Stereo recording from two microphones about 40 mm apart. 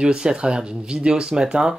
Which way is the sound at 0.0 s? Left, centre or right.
Right.